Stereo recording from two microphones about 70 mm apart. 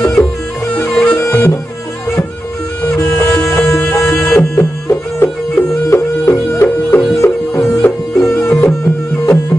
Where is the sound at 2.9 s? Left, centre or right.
Left.